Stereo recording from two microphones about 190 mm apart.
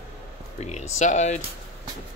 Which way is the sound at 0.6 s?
35° left (ahead or behind).